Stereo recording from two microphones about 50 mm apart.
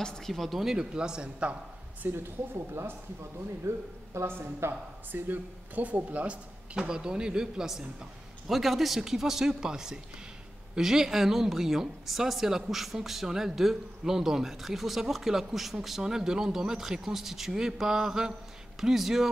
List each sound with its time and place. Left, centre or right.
0.0 s speech: centre
0.3 s speech: centre
0.9 s a man's voice: centre
2.0 s a woman's voice: right
2.7 s speech: right
4.3 s speech: right
5.1 s a man's voice: right; by 19.3 s centre